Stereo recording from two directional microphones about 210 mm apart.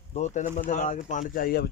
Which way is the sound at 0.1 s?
35° left (ahead or behind).